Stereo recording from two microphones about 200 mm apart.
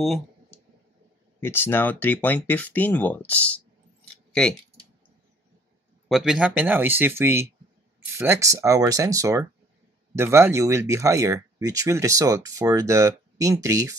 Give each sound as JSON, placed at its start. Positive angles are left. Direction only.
{"t": 1.4, "sound": "speech", "side_deg": 10}
{"t": 6.0, "sound": "speech", "side_deg": 0}